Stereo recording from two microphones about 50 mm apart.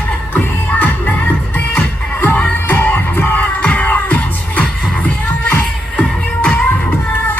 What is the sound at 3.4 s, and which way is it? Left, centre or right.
Music, left.